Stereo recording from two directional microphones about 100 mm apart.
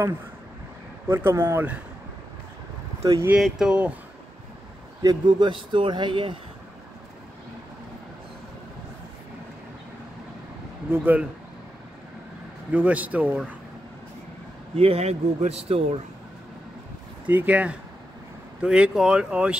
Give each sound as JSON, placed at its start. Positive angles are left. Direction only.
{"t": 1.0, "sound": "speech", "side_deg": -25}
{"t": 3.0, "sound": "speech", "side_deg": -30}
{"t": 3.3, "sound": "speech", "side_deg": -5}
{"t": 5.0, "sound": "speech", "side_deg": -50}
{"t": 10.9, "sound": "speech", "side_deg": -20}
{"t": 12.7, "sound": "speech", "side_deg": -15}
{"t": 14.8, "sound": "speech", "side_deg": -80}
{"t": 17.3, "sound": "speech", "side_deg": -15}